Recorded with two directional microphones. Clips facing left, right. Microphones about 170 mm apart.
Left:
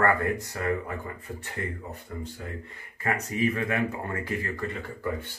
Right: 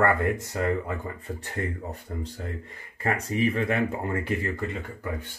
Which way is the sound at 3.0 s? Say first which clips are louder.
Right 2 dB; 30° right (ahead or behind).